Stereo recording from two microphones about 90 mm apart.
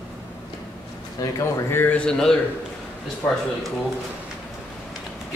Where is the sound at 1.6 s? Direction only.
20° left (ahead or behind).